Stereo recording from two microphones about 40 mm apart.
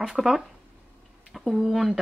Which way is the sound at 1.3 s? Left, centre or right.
Centre.